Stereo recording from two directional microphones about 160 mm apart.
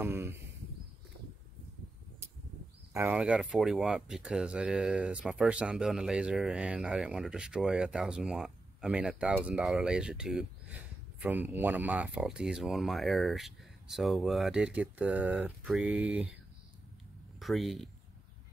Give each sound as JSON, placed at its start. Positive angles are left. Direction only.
{"t": 0.0, "sound": "a sound", "side_deg": -15}
{"t": 3.1, "sound": "speech", "side_deg": -5}
{"t": 17.4, "sound": "speech", "side_deg": 0}